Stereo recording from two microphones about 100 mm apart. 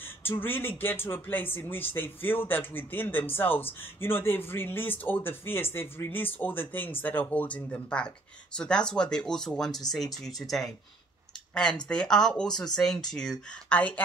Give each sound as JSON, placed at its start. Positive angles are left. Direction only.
{"t": 0.0, "sound": "speech", "side_deg": 20}
{"t": 11.9, "sound": "speech", "side_deg": 5}